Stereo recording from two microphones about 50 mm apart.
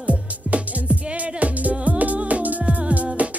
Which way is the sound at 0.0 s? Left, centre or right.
Right.